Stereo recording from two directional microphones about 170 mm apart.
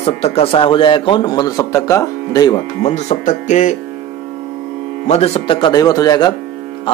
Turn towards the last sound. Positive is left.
turn(degrees=25)  # may be behind; listen again after turning